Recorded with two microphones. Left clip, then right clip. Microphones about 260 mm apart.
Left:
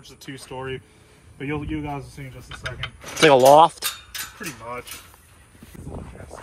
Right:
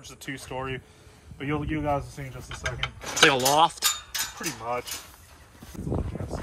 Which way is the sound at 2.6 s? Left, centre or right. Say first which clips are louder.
Right 1 dB; right.